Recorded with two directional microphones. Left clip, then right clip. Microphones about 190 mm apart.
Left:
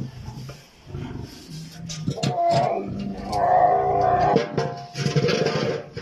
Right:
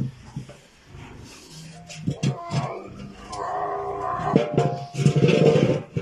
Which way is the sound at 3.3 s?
45° left (ahead or behind).